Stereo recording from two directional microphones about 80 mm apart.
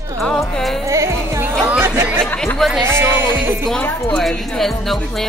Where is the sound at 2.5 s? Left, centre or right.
Centre.